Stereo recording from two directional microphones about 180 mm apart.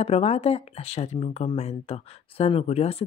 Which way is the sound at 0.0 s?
35° left (ahead or behind).